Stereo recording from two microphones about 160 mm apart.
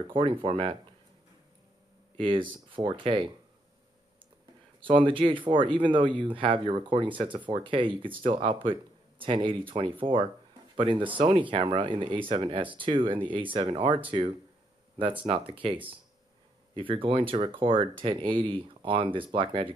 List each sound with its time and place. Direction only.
0.1 s speech: 30° right (ahead or behind)
2.1 s speech: 30° right (ahead or behind)
4.7 s speech: 30° right (ahead or behind)
15.0 s speech: 30° right (ahead or behind)